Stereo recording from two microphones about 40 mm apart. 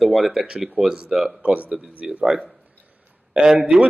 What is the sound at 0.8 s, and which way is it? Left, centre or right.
Speech, right.